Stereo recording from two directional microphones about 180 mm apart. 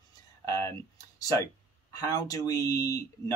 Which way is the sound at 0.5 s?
15° left (ahead or behind).